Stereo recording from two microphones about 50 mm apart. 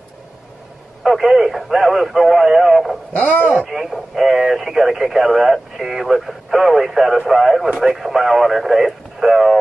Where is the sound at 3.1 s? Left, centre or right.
Left.